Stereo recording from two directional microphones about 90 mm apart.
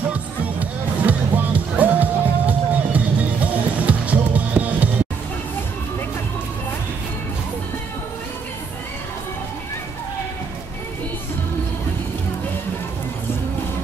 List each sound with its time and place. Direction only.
0.1 s music: 20° right (ahead or behind)